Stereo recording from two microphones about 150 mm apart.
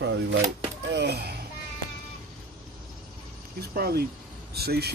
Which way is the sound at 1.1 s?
90° right.